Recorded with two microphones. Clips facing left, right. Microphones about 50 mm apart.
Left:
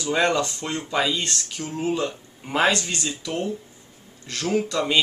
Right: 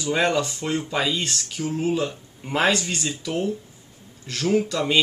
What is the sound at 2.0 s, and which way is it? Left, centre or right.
A man's voice, centre.